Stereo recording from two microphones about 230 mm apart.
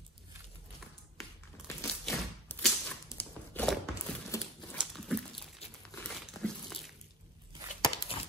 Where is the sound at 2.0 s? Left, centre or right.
Centre.